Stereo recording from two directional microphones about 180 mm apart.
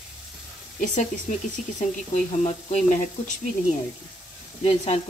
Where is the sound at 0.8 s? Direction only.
45° left (ahead or behind).